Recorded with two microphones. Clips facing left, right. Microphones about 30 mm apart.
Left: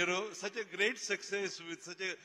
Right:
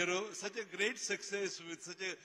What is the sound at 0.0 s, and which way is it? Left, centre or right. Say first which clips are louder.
A man's voice: left 2 dB; centre.